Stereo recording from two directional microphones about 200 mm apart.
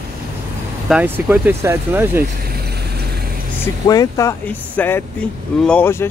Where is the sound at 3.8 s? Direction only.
15° left (ahead or behind).